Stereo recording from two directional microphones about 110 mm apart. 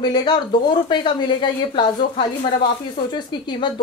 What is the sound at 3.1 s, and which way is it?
Speech, 45° left (ahead or behind).